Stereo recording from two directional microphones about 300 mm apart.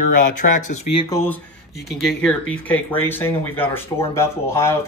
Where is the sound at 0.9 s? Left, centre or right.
Centre.